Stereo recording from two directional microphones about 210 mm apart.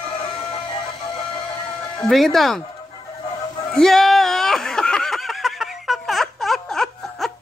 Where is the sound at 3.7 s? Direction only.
Centre (ahead or behind).